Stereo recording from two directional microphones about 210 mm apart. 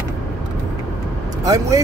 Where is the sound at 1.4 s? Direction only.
15° right (ahead or behind).